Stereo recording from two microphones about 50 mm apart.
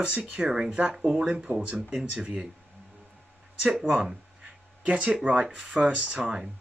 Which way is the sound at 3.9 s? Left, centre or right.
Centre.